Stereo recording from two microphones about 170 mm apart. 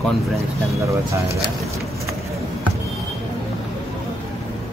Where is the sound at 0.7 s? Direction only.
20° right (ahead or behind).